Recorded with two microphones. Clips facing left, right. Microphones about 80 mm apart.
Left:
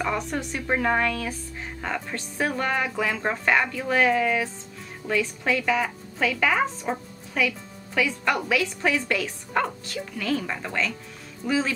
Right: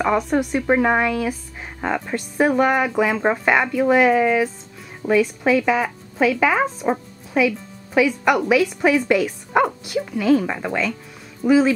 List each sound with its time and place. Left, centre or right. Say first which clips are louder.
0.4 s speech: right 8 dB; centre